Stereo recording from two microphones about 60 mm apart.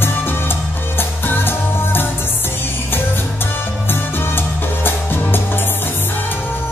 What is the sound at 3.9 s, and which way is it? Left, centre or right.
Music, left.